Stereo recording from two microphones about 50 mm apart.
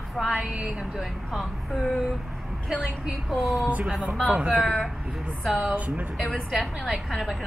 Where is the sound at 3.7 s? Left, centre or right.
Right.